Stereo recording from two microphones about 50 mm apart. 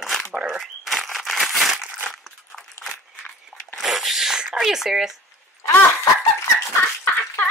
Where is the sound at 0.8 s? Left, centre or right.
Centre.